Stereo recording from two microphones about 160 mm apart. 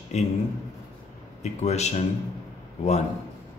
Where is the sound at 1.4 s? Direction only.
45° left (ahead or behind).